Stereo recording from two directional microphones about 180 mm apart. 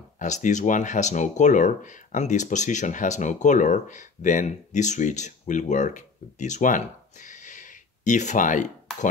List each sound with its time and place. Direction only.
0.2 s speech: 40° left (ahead or behind)